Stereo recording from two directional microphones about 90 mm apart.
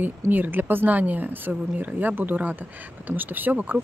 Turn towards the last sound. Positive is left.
turn(degrees=-20)  # may be behind; listen again after turning